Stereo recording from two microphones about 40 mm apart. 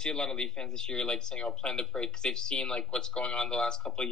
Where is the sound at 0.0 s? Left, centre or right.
Left.